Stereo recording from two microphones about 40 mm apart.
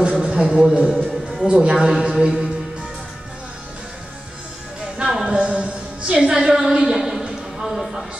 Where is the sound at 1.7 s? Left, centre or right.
Centre.